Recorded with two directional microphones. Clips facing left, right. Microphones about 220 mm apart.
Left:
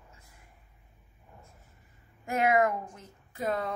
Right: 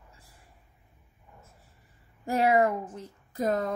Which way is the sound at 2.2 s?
35° right (ahead or behind).